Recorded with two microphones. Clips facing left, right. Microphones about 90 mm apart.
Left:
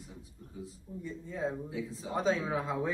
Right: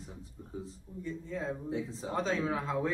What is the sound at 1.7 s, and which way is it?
Speech, 35° right (ahead or behind).